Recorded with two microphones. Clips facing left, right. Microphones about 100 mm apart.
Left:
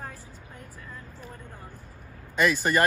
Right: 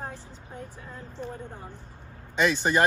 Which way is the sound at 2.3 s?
Centre (ahead or behind).